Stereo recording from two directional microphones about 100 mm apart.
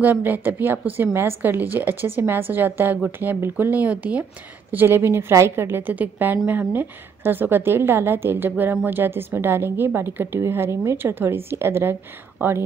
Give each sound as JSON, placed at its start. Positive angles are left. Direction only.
{"t": 0.0, "sound": "a woman's voice", "side_deg": -20}
{"t": 4.7, "sound": "a woman's voice", "side_deg": -25}